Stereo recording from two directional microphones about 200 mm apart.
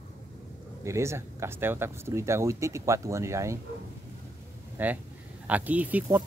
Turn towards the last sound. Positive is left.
turn(degrees=-10)  # may be behind; listen again after turning